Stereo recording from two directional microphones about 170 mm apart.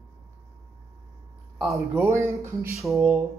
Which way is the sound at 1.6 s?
Centre (ahead or behind).